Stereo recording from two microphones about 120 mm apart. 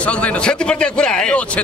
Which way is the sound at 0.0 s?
10° left (ahead or behind).